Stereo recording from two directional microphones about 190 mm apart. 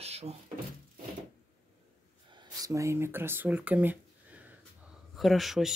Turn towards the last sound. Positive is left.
turn(degrees=0)  # may be behind; listen again after turning